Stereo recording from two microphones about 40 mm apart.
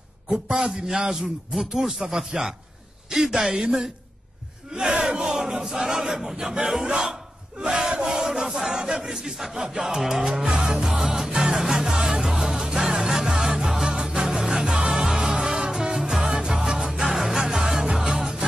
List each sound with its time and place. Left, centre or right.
0.3 s speech: centre
4.8 s a sound: right
6.6 s speech: centre
6.9 s speech: right
8.1 s speech: centre
10.4 s music: right